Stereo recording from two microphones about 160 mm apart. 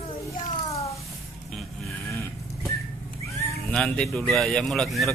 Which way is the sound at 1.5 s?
Centre (ahead or behind).